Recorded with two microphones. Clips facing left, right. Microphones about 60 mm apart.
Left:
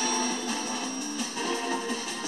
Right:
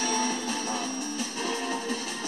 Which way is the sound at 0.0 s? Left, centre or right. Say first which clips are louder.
Right 1 dB; right.